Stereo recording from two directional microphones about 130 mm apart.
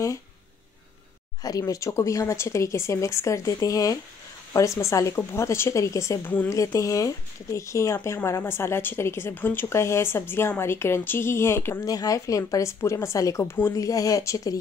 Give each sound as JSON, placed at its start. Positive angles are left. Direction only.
{"t": 1.4, "sound": "a woman's voice", "side_deg": 25}